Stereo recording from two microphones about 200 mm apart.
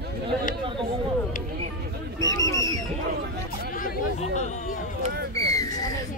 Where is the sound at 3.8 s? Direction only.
40° left (ahead or behind).